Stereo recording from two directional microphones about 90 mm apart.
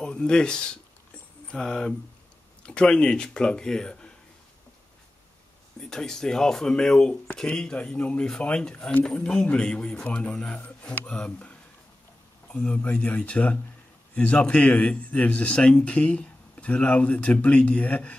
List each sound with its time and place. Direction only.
0.0 s a man's voice: 10° left (ahead or behind)
5.8 s a man's voice: 5° left (ahead or behind)
12.5 s a man's voice: 15° left (ahead or behind)